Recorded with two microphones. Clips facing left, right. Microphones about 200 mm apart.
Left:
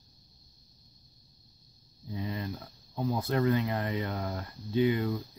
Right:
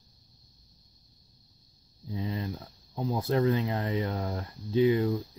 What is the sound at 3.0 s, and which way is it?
Speech, 30° right (ahead or behind).